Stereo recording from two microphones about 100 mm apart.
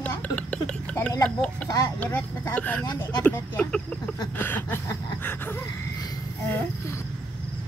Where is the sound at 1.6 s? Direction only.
40° left (ahead or behind).